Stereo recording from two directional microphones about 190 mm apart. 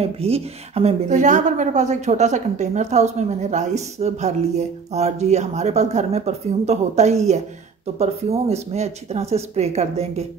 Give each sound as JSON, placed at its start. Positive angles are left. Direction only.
{"t": 0.0, "sound": "a woman's voice", "side_deg": -30}